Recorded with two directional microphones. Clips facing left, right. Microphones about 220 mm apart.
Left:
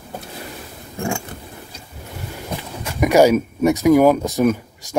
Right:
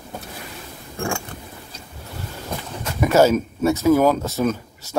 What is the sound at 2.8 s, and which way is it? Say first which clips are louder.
Speech: left 2 dB; 15° left (ahead or behind).